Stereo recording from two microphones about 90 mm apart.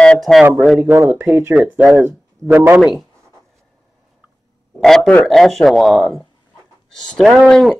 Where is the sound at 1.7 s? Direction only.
15° right (ahead or behind).